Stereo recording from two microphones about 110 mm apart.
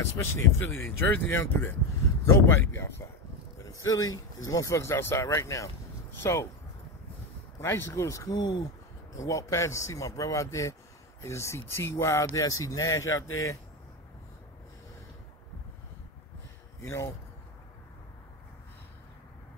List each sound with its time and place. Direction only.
0.0 s speech: 25° left (ahead or behind)
7.6 s speech: 25° left (ahead or behind)